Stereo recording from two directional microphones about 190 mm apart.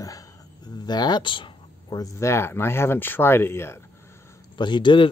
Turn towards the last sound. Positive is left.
turn(degrees=25)  # may be behind; listen again after turning